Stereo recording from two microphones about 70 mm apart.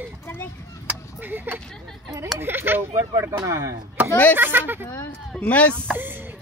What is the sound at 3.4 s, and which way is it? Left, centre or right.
Speech, right.